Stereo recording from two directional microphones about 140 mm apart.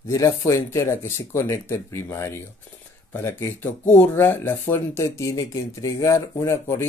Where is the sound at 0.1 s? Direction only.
25° left (ahead or behind).